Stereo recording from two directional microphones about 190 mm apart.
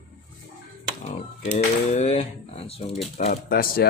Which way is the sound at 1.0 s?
40° left (ahead or behind).